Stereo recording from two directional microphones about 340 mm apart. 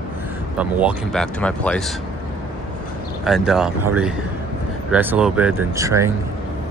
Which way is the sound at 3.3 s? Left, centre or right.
Centre.